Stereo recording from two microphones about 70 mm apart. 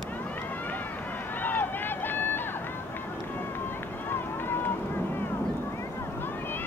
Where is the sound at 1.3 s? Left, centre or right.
Left.